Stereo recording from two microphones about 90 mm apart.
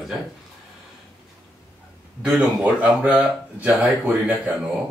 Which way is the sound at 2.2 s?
5° right (ahead or behind).